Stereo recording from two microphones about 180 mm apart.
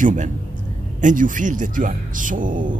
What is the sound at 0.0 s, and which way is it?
Speech, 45° right (ahead or behind).